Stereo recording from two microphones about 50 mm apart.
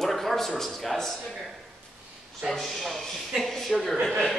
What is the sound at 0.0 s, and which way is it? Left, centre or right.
A man's voice, centre.